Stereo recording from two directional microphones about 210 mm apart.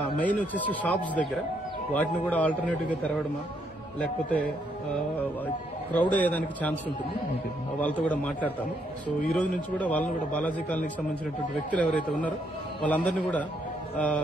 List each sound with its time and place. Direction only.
0.2 s a man's voice: 5° left (ahead or behind)
5.9 s a man's voice: 5° left (ahead or behind)
7.8 s a man's voice: 5° left (ahead or behind)